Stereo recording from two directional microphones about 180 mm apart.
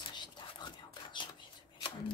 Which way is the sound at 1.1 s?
25° left (ahead or behind).